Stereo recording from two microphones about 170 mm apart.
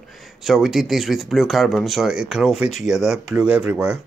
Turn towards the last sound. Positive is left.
turn(degrees=-5)  # may be behind; listen again after turning